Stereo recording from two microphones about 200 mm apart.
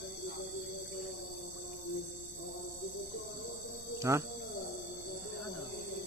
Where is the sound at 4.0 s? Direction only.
15° right (ahead or behind).